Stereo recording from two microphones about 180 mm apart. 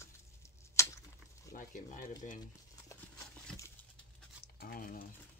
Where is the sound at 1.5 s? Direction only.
45° left (ahead or behind).